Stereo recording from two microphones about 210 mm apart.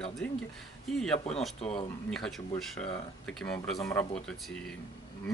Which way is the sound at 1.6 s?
30° left (ahead or behind).